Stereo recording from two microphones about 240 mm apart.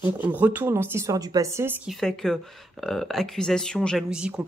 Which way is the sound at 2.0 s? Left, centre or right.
Centre.